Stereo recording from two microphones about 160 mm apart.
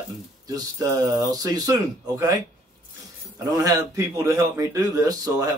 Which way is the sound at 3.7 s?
20° right (ahead or behind).